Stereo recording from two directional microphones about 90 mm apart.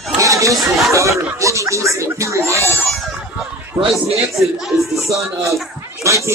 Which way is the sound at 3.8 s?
35° right (ahead or behind).